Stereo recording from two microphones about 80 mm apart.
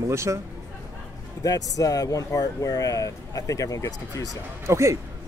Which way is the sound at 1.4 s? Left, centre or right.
Left.